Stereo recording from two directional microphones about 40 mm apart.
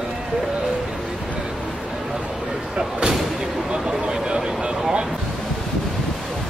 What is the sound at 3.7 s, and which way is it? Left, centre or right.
Vehicle, right.